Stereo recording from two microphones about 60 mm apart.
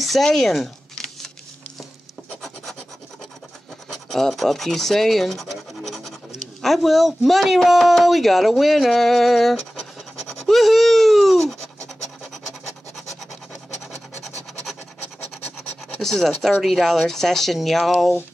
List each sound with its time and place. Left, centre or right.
0.2 s speech: centre
3.9 s speech: centre
10.5 s a sound: centre
16.0 s speech: centre